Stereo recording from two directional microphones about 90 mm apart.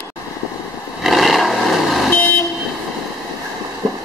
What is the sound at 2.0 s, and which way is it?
Vehicle, 20° left (ahead or behind).